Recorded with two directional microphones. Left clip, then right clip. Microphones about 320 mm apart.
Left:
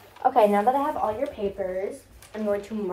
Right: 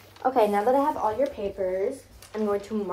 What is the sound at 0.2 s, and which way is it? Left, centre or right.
Speech, centre.